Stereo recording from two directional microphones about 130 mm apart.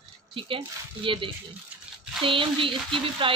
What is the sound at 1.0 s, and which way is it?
Speech, 40° right (ahead or behind).